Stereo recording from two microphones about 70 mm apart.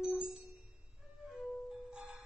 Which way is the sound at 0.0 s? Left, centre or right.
Centre.